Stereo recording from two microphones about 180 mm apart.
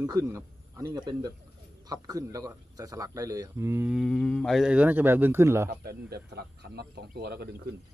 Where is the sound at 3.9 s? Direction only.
Centre (ahead or behind); by 5.7 s 15° right (ahead or behind).